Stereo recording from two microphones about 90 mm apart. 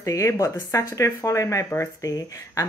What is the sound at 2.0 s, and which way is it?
Speech, 40° left (ahead or behind).